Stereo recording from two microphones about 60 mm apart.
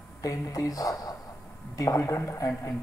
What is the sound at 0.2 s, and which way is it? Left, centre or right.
Speech, left.